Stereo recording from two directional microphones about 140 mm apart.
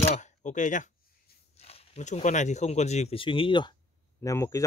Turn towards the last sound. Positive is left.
turn(degrees=25)  # may be behind; listen again after turning